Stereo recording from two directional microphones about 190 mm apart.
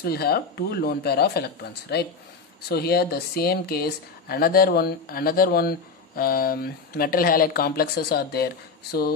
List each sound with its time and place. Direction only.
0.0 s speech: 55° left (ahead or behind)